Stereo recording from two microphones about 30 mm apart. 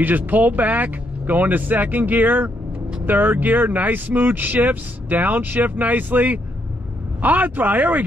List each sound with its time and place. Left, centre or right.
0.3 s speech: right